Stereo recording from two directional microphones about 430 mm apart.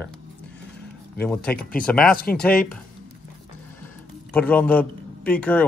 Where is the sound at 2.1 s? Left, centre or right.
Left.